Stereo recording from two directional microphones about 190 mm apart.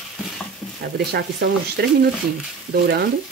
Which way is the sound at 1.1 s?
60° right (ahead or behind).